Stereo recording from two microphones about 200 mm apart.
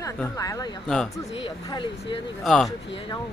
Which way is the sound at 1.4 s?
25° left (ahead or behind).